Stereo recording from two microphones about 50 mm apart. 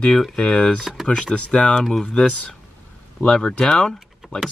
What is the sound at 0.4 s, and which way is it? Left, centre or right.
Speech, centre.